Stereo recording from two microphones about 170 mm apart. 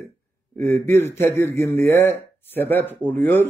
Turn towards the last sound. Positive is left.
turn(degrees=10)  # may be behind; listen again after turning